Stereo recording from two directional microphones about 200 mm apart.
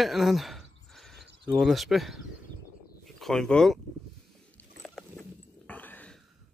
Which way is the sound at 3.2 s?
Centre (ahead or behind).